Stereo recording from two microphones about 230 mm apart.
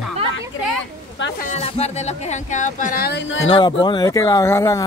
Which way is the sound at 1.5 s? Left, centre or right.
Left.